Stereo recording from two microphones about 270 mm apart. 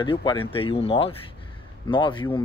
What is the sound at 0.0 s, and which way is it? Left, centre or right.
Speech, centre.